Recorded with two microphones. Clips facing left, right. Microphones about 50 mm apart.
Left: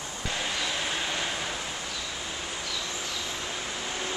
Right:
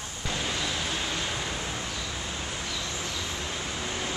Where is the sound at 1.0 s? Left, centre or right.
Centre.